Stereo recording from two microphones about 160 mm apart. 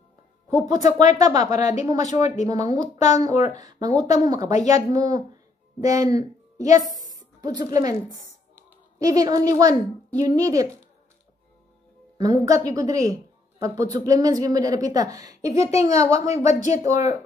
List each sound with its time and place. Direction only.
0.5 s speech: 25° right (ahead or behind)
0.7 s speech: 50° left (ahead or behind)
2.4 s a woman's voice: 20° right (ahead or behind)
2.7 s speech: 45° left (ahead or behind)
3.5 s a woman's voice: 25° right (ahead or behind)
9.0 s a woman's voice: 20° right (ahead or behind)
12.2 s a woman's voice: 20° right (ahead or behind)
15.6 s speech: 45° left (ahead or behind)